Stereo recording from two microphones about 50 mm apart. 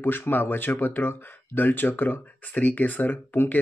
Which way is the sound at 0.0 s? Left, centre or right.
Left.